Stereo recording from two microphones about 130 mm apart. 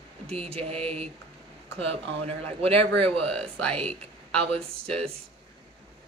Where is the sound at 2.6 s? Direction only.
50° right (ahead or behind).